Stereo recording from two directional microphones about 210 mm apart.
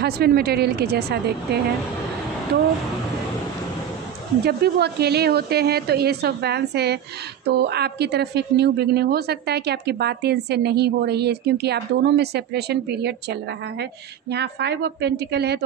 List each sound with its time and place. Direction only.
0.0 s a woman's voice: 50° right (ahead or behind)
4.5 s a woman's voice: 50° right (ahead or behind)